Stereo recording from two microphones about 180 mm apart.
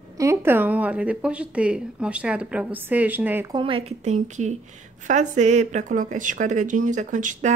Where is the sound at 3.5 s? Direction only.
30° right (ahead or behind).